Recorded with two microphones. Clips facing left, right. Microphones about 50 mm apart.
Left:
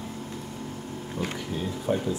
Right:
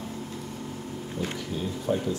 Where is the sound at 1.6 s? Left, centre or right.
Centre.